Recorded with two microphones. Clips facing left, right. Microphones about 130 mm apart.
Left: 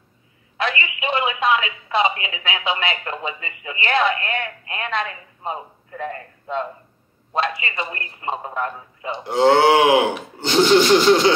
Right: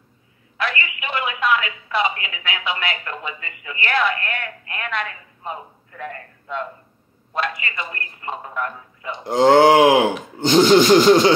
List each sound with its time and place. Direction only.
0.6 s speech: 25° left (ahead or behind)
9.2 s speech: 40° right (ahead or behind)